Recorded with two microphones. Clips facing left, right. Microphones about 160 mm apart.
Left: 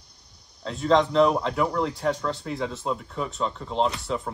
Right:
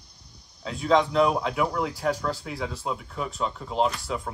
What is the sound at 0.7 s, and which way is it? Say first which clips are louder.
Speech: left 1 dB; 5° right (ahead or behind).